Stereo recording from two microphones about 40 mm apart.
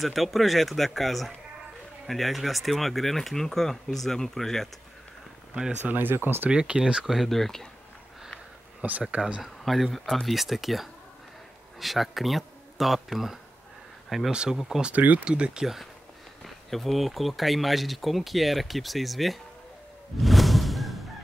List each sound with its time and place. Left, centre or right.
0.0 s speech: centre
5.9 s speech: right
6.5 s speech: right
7.2 s speech: centre
8.8 s speech: right
9.4 s speech: centre
15.0 s speech: right
15.2 s speech: right
15.6 s speech: centre
20.2 s music: centre